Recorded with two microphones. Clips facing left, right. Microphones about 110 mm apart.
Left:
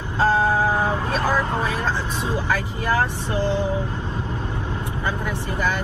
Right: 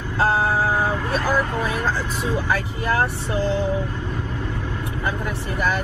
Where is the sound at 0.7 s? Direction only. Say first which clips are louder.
Even; 20° left (ahead or behind).